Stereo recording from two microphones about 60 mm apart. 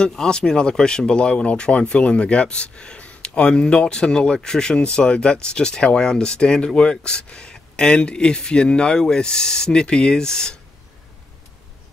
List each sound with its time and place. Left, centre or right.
0.0 s speech: centre